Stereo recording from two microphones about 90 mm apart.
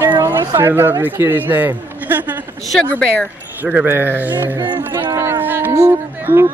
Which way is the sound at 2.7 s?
10° left (ahead or behind).